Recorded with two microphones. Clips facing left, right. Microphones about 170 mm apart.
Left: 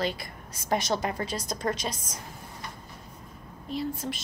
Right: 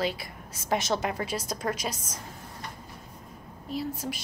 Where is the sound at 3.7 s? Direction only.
5° right (ahead or behind).